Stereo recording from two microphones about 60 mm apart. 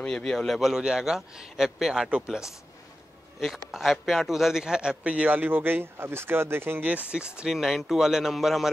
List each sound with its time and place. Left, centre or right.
0.0 s a man's voice: centre
0.6 s a man's voice: centre; by 6.8 s right
6.8 s speech: right
7.5 s speech: centre